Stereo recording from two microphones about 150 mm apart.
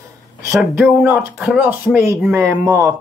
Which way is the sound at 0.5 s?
Centre (ahead or behind).